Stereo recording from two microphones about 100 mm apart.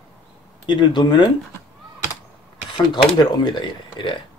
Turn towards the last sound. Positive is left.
turn(degrees=55)  # may be behind; listen again after turning